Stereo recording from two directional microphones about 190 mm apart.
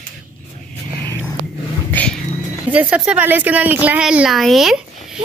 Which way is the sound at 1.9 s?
10° left (ahead or behind).